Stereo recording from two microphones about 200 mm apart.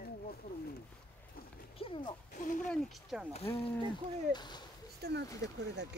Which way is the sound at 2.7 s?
Centre (ahead or behind).